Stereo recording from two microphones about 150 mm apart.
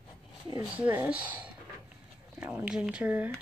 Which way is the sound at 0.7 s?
10° right (ahead or behind).